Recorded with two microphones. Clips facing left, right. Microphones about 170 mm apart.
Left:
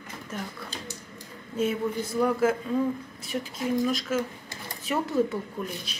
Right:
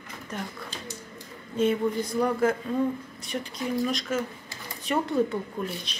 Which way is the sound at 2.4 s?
5° left (ahead or behind).